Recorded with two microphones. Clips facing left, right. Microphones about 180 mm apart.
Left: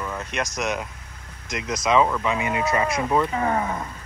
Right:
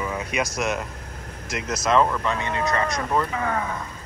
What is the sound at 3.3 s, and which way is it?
Speech, 30° left (ahead or behind).